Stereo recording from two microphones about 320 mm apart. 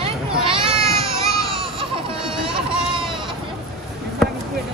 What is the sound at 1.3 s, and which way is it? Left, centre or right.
Baby cry, centre.